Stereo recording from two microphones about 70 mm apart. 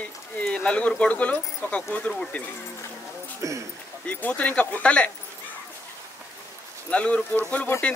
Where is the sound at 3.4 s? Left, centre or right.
Right.